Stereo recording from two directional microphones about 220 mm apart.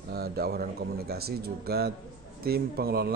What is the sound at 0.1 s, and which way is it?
A man's voice, 45° right (ahead or behind).